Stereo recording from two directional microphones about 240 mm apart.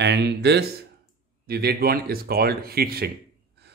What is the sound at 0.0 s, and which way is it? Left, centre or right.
Speech, right.